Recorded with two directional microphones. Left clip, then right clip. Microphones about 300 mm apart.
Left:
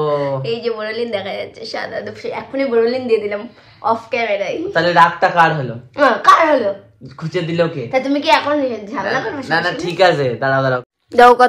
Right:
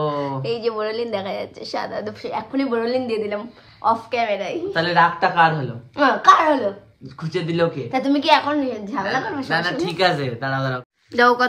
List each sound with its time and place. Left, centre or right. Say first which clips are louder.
0.4 s a woman's voice: left 2 dB; centre
9.5 s speech: left 5 dB; centre